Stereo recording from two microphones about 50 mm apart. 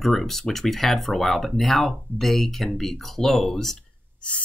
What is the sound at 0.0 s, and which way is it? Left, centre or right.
Speech, centre.